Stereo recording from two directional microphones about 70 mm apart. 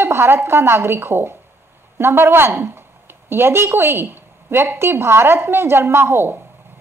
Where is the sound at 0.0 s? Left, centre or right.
Right.